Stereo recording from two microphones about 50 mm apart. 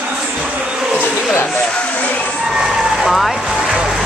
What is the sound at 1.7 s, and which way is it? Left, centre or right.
Music, left.